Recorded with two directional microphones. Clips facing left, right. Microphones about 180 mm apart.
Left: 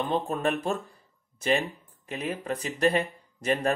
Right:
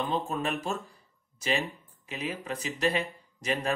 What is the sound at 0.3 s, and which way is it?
Speech, 55° left (ahead or behind).